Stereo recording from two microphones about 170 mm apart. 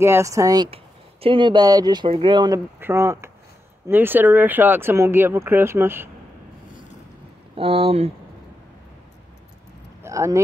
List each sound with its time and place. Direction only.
0.0 s speech: 15° right (ahead or behind)
7.5 s speech: 35° right (ahead or behind)
10.0 s speech: 15° right (ahead or behind)